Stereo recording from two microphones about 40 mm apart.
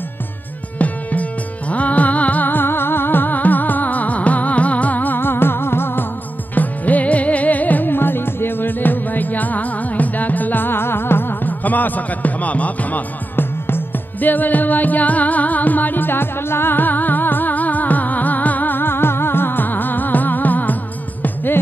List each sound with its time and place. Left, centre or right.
0.7 s music: left
2.5 s music: left
6.5 s music: left
7.9 s music: left
11.6 s music: left
13.4 s music: left
14.2 s music: left
18.8 s music: left